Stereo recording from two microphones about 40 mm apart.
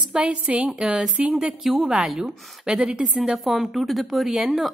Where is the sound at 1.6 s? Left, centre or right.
Centre.